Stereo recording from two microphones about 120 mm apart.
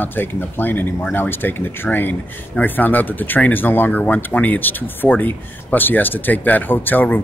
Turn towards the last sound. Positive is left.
turn(degrees=15)  # may be behind; listen again after turning